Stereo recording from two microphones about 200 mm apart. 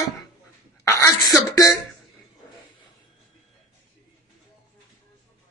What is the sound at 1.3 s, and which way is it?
Speech, 15° left (ahead or behind).